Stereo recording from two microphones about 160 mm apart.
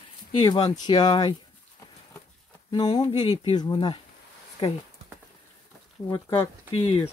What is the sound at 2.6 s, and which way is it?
Speech, 25° left (ahead or behind).